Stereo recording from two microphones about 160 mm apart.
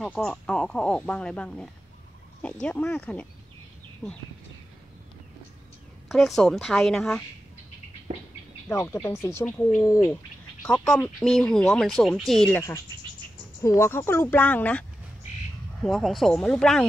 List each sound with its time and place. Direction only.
0.0 s speech: 5° left (ahead or behind)
6.0 s speech: centre (ahead or behind)
8.6 s speech: 15° left (ahead or behind)
13.6 s speech: 15° left (ahead or behind)